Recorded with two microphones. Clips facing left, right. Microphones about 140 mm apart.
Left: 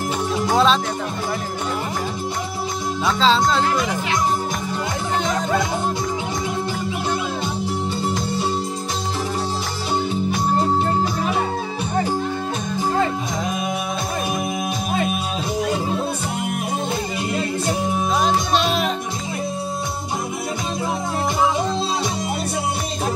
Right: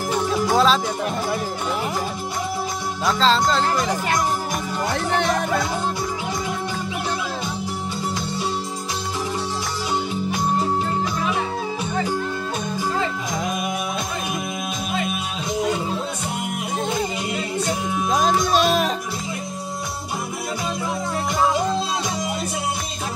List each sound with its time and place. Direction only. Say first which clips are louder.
0.5 s music: left 1 dB; centre (ahead or behind)
3.1 s speech: left 1 dB; centre (ahead or behind)
18.1 s music: right 2 dB; 45° right (ahead or behind)